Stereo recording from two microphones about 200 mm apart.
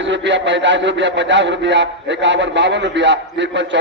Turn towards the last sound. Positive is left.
turn(degrees=-65)  # may be behind; listen again after turning